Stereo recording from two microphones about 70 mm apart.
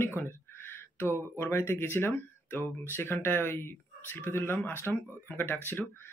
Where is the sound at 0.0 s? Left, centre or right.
Left.